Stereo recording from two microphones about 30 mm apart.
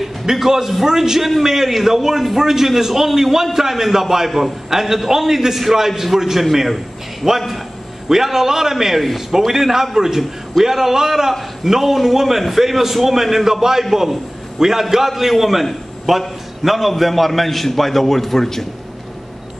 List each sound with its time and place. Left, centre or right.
0.3 s a man's voice: centre